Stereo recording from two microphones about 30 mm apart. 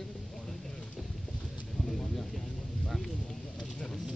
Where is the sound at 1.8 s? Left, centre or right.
Centre.